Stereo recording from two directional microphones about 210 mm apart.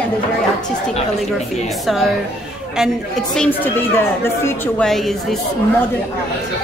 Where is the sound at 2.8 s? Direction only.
Centre (ahead or behind).